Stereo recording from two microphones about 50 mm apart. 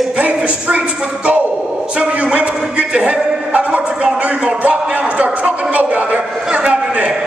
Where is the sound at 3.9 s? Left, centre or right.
Centre.